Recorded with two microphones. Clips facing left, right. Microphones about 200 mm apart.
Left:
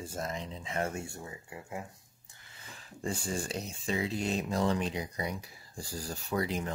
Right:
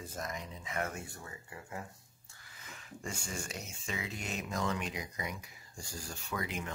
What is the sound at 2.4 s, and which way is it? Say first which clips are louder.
Speech: left 1 dB; 30° left (ahead or behind).